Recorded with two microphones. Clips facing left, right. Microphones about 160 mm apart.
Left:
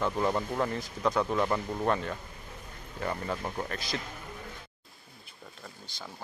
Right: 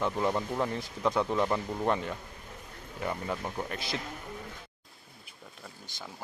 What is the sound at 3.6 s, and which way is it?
Speech, 20° right (ahead or behind).